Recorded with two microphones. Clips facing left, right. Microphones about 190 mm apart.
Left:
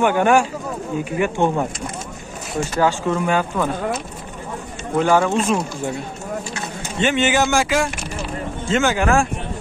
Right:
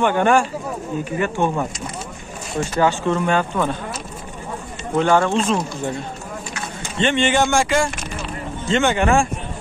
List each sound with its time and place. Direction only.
0.0 s speech: 10° left (ahead or behind)
5.0 s speech: 5° left (ahead or behind)
7.0 s speech: 5° left (ahead or behind)